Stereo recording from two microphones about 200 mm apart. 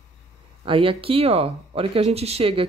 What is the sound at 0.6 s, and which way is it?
Speech, 25° right (ahead or behind).